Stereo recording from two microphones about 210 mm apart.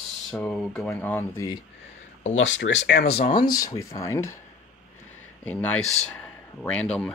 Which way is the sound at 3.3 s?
15° left (ahead or behind).